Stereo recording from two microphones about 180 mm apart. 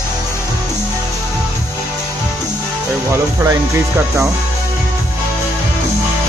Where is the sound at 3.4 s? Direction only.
15° right (ahead or behind).